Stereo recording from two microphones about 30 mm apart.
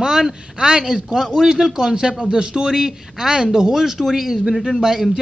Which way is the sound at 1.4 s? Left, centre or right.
Centre.